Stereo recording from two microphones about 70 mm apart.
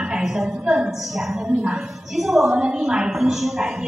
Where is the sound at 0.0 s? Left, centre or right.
Centre.